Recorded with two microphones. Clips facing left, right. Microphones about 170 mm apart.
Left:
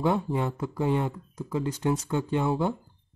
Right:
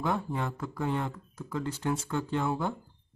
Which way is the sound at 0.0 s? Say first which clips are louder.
Left 5 dB; 20° left (ahead or behind).